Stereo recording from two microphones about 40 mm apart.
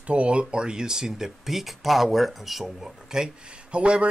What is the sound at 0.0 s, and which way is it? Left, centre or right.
Speech, right.